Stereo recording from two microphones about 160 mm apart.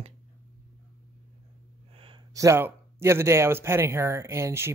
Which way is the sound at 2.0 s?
35° right (ahead or behind).